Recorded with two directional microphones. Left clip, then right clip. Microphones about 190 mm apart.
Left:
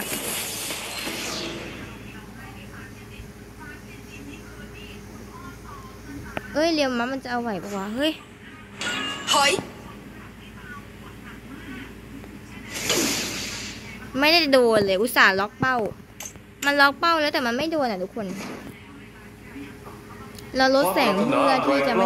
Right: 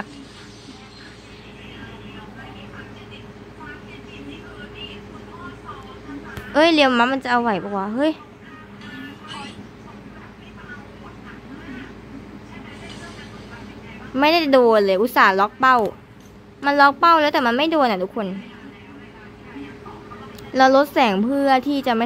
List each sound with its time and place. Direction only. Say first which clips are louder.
0.1 s a sound: left 11 dB; 60° left (ahead or behind)
6.5 s a woman's voice: right 8 dB; centre (ahead or behind)
8.7 s music: left 12 dB; 55° left (ahead or behind)
12.8 s a sound: left 19 dB; 55° left (ahead or behind)
14.1 s a woman's voice: right 3 dB; 5° left (ahead or behind)
20.5 s a woman's voice: right 5 dB; 5° left (ahead or behind)